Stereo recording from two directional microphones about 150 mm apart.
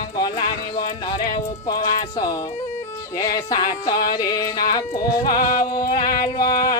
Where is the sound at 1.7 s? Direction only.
25° left (ahead or behind).